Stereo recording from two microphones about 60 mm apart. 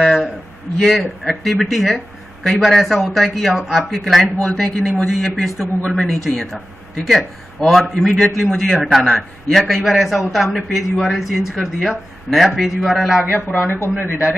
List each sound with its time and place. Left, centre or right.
0.7 s a man's voice: centre
13.3 s a man's voice: left